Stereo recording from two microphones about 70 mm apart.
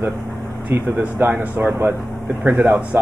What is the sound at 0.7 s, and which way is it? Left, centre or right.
Speech, right.